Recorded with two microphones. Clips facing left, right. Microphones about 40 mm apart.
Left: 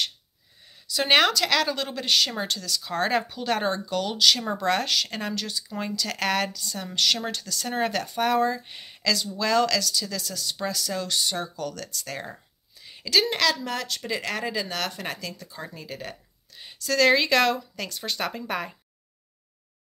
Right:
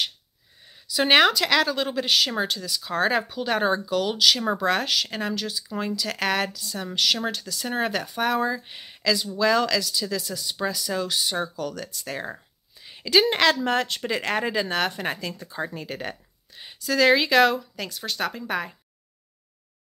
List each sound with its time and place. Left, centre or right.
0.7 s a woman's voice: centre; by 16.2 s right
16.5 s speech: centre